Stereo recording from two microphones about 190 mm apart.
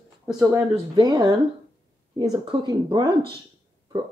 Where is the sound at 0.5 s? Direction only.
20° right (ahead or behind).